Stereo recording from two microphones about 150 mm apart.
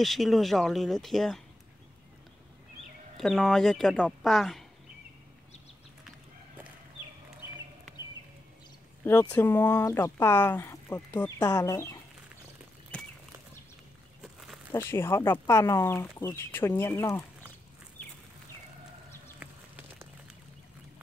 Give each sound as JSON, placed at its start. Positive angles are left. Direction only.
{"t": 0.0, "sound": "speech", "side_deg": 0}
{"t": 3.2, "sound": "speech", "side_deg": 0}
{"t": 9.0, "sound": "speech", "side_deg": 15}
{"t": 11.2, "sound": "speech", "side_deg": 25}
{"t": 14.7, "sound": "speech", "side_deg": 15}
{"t": 19.4, "sound": "a sound", "side_deg": -10}